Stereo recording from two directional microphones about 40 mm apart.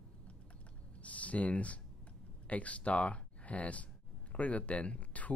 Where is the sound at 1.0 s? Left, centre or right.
Left.